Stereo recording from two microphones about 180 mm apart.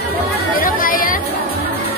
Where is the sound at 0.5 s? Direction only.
50° left (ahead or behind).